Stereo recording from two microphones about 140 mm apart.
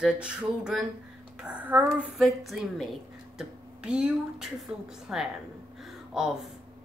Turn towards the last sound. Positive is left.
turn(degrees=0)  # may be behind; listen again after turning